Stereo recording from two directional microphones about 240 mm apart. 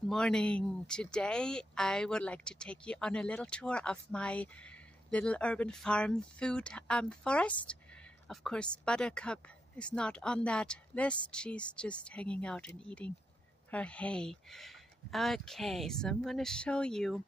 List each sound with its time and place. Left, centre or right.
0.1 s speech: centre